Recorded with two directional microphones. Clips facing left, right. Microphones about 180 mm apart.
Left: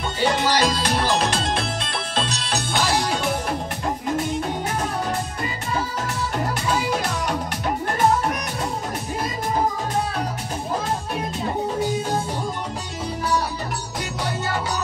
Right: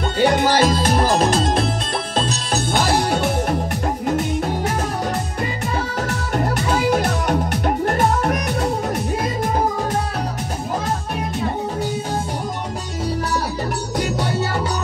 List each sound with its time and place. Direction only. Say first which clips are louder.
0.2 s music: right 5 dB; 55° right (ahead or behind)
6.8 s music: right 6 dB; 60° right (ahead or behind)